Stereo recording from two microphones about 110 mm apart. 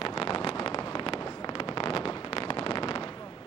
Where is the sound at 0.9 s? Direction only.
60° left (ahead or behind).